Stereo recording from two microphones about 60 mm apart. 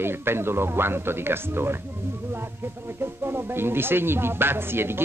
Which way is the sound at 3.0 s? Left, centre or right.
Right.